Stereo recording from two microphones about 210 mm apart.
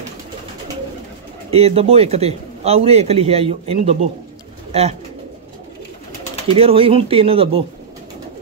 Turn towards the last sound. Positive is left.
turn(degrees=-25)  # may be behind; listen again after turning